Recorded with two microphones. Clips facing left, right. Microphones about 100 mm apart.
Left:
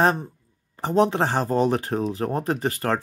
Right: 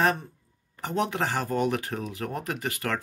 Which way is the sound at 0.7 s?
30° left (ahead or behind).